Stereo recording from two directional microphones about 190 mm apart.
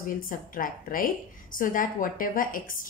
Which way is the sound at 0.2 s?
45° left (ahead or behind).